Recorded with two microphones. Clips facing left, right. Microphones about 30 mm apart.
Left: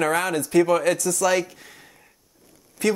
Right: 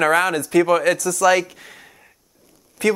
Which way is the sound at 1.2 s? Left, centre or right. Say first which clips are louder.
Right 6 dB; right.